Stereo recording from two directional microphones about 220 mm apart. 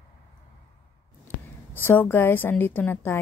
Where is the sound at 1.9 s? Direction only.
10° left (ahead or behind).